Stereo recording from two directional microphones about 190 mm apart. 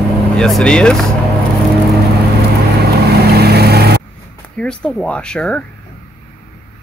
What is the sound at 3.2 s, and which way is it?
Vehicle, 55° right (ahead or behind).